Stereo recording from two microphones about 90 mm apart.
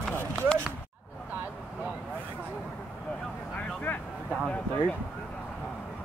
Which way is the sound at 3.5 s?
20° left (ahead or behind).